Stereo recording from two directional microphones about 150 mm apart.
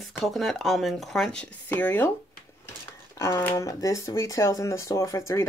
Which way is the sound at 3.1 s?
20° left (ahead or behind).